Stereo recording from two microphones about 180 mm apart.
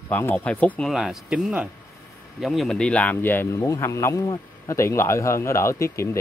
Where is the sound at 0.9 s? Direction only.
5° right (ahead or behind).